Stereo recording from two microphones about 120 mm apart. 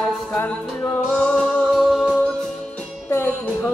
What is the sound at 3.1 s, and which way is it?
Music, 20° left (ahead or behind).